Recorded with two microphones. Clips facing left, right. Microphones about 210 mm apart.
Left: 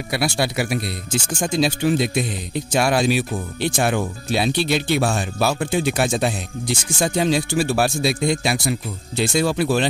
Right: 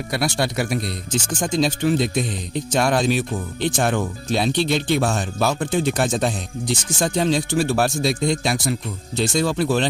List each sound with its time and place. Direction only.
0.1 s speech: 10° left (ahead or behind)